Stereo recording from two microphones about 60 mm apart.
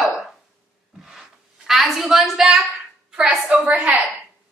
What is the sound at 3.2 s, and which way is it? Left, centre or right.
Speech, right.